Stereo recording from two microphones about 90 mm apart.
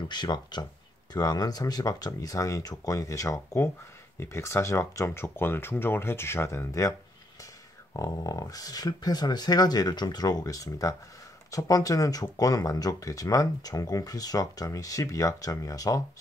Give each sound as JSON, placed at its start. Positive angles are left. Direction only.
{"t": 0.1, "sound": "speech", "side_deg": 55}